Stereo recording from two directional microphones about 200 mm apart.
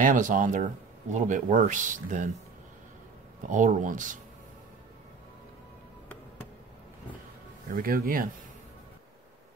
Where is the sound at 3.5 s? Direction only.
40° right (ahead or behind).